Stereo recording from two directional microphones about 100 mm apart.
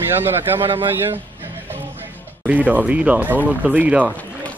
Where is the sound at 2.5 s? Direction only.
15° right (ahead or behind).